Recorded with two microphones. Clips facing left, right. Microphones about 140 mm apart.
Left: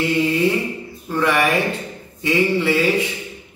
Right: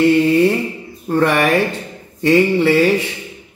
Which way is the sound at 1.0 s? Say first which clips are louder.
Right 4 dB; 50° right (ahead or behind).